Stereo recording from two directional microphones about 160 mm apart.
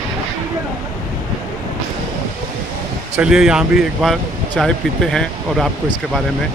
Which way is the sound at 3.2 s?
5° right (ahead or behind).